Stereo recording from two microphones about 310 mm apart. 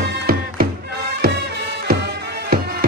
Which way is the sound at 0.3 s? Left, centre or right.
Right.